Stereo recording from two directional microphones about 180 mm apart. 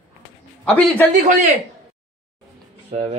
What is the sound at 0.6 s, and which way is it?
Speech, 5° left (ahead or behind).